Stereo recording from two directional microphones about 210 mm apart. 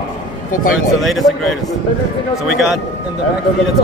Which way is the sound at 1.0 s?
Centre (ahead or behind).